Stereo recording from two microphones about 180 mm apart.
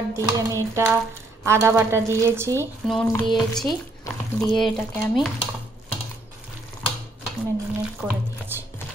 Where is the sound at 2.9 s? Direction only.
Centre (ahead or behind).